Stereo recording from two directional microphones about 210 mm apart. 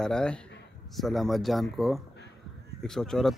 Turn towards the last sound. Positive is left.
turn(degrees=0)  # may be behind; listen again after turning